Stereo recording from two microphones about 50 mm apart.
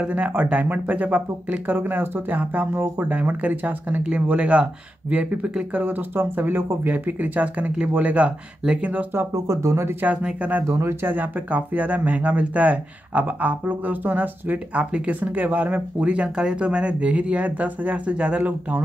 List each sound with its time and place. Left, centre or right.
0.0 s speech: right
3.1 s speech: right
5.9 s speech: right
9.1 s speech: right
11.1 s speech: right
16.1 s speech: centre